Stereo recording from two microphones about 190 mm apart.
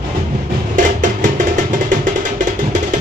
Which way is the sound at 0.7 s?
45° right (ahead or behind).